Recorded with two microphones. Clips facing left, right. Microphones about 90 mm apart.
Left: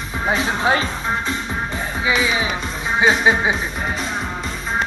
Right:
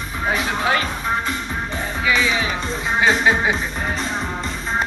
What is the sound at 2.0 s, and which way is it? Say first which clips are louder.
Speech: even; 15° left (ahead or behind).